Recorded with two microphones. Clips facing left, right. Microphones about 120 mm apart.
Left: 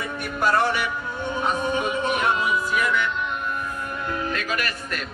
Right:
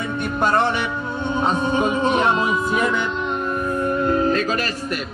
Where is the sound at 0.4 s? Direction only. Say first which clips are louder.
Right 2 dB; 25° right (ahead or behind).